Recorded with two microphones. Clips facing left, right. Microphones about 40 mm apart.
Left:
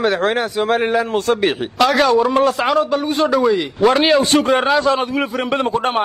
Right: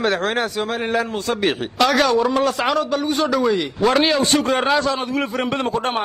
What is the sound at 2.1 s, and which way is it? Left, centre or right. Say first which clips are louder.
Speech: left 3 dB; left.